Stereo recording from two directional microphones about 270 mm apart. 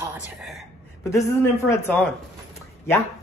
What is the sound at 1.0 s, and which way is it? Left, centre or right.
A man's voice, centre.